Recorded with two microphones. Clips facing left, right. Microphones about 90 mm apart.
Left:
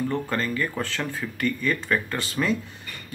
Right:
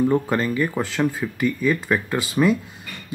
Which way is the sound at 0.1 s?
15° right (ahead or behind).